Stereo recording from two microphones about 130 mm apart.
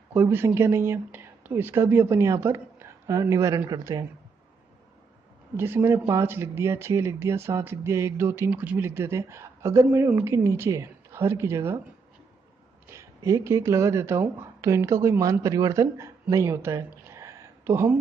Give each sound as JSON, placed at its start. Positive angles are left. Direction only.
{"t": 0.1, "sound": "a woman's voice", "side_deg": -15}
{"t": 5.6, "sound": "a woman's voice", "side_deg": -20}
{"t": 12.8, "sound": "speech", "side_deg": -20}